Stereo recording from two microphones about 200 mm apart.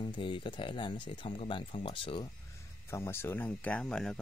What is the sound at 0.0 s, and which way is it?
Speech, 25° left (ahead or behind).